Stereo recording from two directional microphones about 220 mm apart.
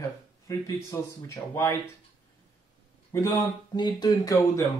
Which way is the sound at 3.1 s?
15° left (ahead or behind).